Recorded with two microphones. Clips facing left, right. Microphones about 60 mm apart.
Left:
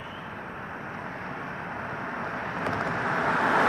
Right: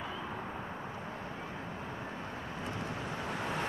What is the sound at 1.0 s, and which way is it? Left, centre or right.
Vehicle, left.